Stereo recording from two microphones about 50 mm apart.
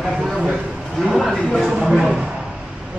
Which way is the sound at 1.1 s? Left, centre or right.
Centre.